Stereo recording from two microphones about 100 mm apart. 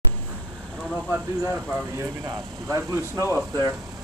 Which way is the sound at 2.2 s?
30° right (ahead or behind).